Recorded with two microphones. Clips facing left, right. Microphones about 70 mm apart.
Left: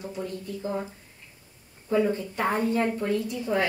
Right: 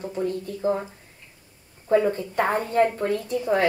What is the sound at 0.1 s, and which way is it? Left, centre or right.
Speech, right.